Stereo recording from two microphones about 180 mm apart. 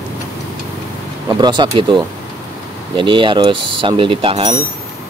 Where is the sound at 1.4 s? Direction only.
25° right (ahead or behind).